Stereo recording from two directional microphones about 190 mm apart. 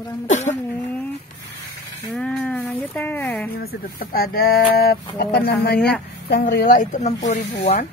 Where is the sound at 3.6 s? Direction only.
50° left (ahead or behind); by 7.8 s 35° left (ahead or behind).